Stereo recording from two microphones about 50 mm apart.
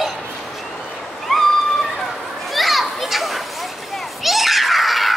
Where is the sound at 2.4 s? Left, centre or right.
Centre.